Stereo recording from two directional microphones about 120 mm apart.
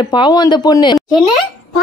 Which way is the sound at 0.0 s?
35° left (ahead or behind).